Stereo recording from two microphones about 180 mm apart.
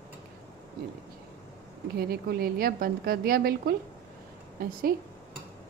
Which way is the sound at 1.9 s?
60° right (ahead or behind).